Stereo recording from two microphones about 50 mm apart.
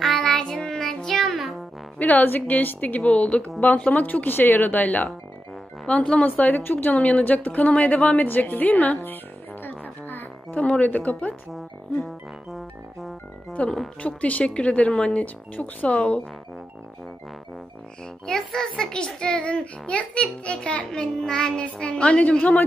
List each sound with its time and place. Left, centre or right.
0.0 s music: centre
2.0 s a woman's voice: left
6.2 s a woman's voice: left
11.5 s music: centre
13.6 s a child's voice: left
15.2 s a child's voice: left
18.0 s a child's voice: centre